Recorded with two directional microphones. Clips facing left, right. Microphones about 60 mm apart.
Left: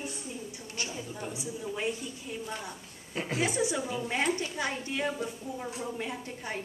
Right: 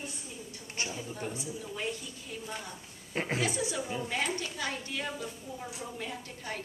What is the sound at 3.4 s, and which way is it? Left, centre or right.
A woman's voice, left.